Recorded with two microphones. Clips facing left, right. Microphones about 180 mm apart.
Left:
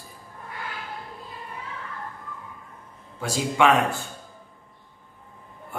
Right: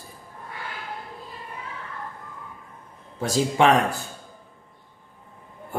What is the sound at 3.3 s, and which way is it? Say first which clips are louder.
Speech: right 2 dB; 35° right (ahead or behind).